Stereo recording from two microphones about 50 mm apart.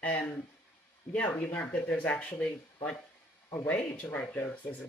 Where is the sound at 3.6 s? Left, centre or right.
Left.